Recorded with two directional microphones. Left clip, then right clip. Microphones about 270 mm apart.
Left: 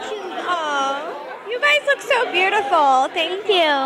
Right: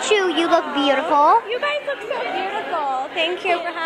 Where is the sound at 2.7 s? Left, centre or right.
Left.